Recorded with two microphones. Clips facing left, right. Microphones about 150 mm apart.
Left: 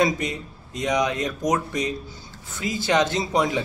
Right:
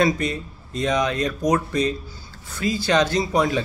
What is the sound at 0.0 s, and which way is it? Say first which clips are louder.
Speech: right 2 dB; 15° left (ahead or behind).